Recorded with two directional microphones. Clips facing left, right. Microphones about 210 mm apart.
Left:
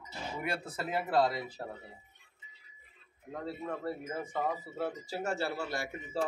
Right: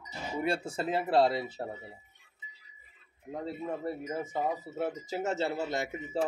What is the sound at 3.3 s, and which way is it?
Speech, 20° right (ahead or behind).